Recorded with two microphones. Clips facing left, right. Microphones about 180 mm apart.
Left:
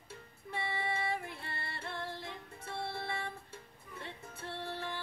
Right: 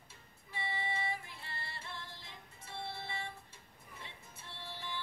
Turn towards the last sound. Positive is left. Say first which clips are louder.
# left 6 dB
turn(degrees=60)  # may be behind; listen again after turning